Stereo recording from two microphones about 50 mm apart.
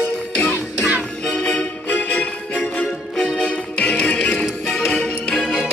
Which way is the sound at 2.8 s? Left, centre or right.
Centre.